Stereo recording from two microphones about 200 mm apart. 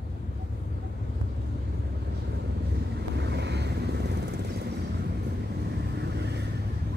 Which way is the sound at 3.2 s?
60° right (ahead or behind).